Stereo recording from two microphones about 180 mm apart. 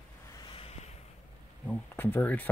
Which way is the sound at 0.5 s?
35° left (ahead or behind).